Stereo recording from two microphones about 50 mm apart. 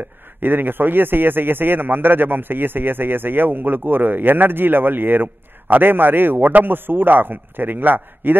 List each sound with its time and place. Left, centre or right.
0.4 s a man's voice: right